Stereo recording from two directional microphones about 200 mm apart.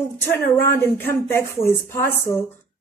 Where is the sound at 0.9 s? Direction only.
10° left (ahead or behind).